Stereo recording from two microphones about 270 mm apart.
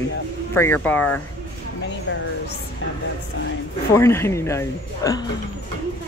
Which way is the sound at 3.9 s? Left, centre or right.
Centre.